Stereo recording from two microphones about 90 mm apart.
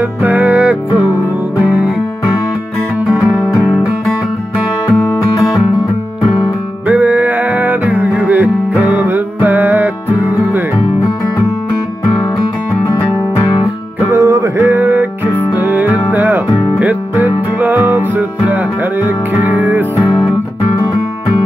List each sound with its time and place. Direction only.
0.2 s music: 20° right (ahead or behind)
3.1 s music: 5° right (ahead or behind)
6.9 s music: 20° right (ahead or behind)
14.0 s music: 30° right (ahead or behind)
14.6 s music: 20° right (ahead or behind)